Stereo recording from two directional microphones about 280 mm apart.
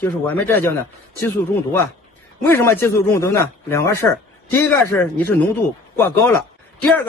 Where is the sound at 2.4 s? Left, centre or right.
Centre.